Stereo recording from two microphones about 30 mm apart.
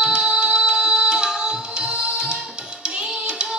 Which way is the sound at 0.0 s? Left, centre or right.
Right.